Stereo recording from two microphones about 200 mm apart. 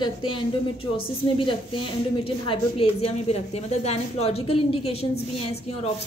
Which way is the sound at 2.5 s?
30° left (ahead or behind).